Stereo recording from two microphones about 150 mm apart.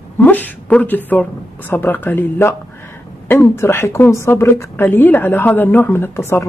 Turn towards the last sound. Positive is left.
turn(degrees=15)  # may be behind; listen again after turning